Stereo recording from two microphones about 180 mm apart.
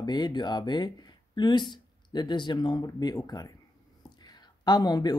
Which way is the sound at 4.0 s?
25° left (ahead or behind).